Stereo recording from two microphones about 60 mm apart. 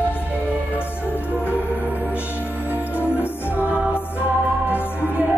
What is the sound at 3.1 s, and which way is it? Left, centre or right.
Music, left.